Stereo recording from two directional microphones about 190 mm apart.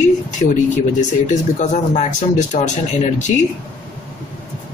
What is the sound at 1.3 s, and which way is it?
Speech, 40° left (ahead or behind).